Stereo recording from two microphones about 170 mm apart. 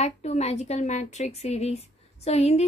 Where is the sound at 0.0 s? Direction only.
40° left (ahead or behind).